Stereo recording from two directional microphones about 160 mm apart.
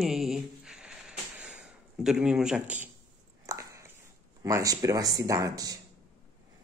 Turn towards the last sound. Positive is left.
turn(degrees=-25)  # may be behind; listen again after turning